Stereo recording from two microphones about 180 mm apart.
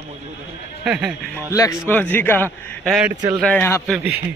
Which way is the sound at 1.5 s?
20° left (ahead or behind).